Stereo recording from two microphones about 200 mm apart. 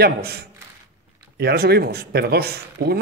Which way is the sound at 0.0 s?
50° right (ahead or behind).